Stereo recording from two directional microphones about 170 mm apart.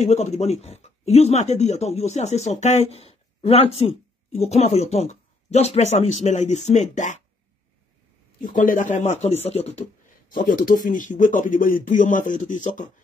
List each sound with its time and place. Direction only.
0.0 s speech: 40° left (ahead or behind)
8.5 s speech: 50° left (ahead or behind)
10.3 s speech: 55° left (ahead or behind)